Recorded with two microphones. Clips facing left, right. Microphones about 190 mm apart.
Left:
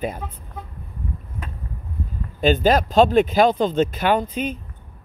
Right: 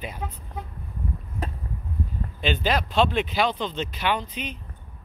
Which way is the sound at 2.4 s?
45° left (ahead or behind).